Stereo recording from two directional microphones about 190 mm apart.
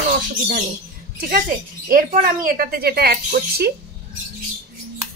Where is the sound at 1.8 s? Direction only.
45° right (ahead or behind).